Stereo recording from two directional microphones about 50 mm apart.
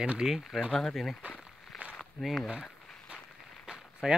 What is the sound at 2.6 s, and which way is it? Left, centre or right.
Walk, centre.